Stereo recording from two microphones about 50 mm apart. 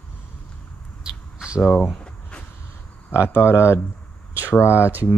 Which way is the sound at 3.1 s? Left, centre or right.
Left.